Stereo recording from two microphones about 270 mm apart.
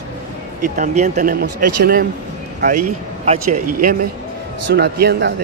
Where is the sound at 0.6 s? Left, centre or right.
Right.